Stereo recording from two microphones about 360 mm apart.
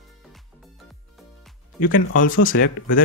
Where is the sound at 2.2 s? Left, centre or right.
Left.